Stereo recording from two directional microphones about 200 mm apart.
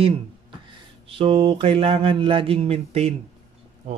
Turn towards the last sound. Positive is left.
turn(degrees=-30)  # may be behind; listen again after turning